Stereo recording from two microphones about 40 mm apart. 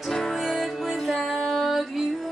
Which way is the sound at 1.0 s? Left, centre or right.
Centre.